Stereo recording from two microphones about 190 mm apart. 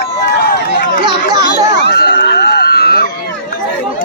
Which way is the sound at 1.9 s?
60° left (ahead or behind).